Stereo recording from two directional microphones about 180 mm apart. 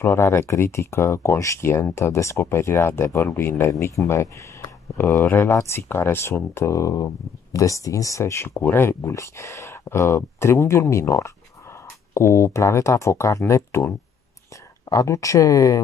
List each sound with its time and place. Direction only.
0.0 s speech: 15° left (ahead or behind)